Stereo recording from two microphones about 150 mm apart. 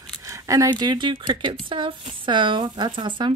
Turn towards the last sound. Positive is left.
turn(degrees=-30)  # may be behind; listen again after turning